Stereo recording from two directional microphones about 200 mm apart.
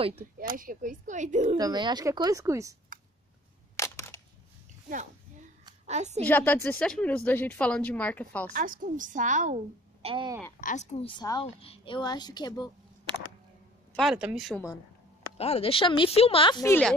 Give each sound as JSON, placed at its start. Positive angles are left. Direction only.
{"t": 0.6, "sound": "speech", "side_deg": -40}
{"t": 1.6, "sound": "a woman's voice", "side_deg": -20}
{"t": 3.7, "sound": "single-lens reflex camera", "side_deg": 15}
{"t": 5.9, "sound": "speech", "side_deg": -35}
{"t": 6.2, "sound": "a woman's voice", "side_deg": 10}
{"t": 8.5, "sound": "speech", "side_deg": -45}
{"t": 10.0, "sound": "a woman's voice", "side_deg": -20}
{"t": 10.6, "sound": "speech", "side_deg": 35}
{"t": 13.9, "sound": "speech", "side_deg": -5}
{"t": 15.3, "sound": "speech", "side_deg": 30}